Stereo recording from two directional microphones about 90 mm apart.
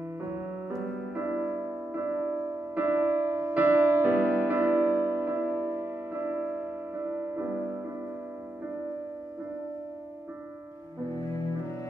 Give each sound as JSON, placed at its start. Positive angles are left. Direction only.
{"t": 1.1, "sound": "music", "side_deg": -20}